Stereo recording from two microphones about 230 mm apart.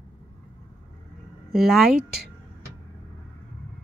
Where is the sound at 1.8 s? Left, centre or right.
Right.